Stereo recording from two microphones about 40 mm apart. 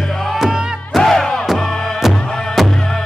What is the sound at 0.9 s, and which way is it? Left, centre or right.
Music, centre.